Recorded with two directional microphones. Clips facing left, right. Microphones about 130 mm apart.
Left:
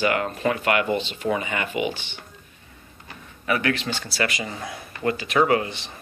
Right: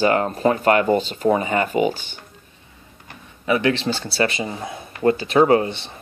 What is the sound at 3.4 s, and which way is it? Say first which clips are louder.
Speech: right 5 dB; 25° right (ahead or behind).